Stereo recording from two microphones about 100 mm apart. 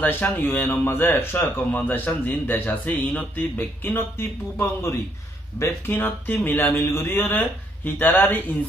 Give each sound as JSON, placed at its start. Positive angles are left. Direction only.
{"t": 0.0, "sound": "speech", "side_deg": 20}